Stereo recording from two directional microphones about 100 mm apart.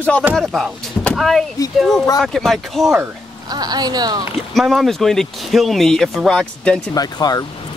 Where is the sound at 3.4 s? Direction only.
40° right (ahead or behind).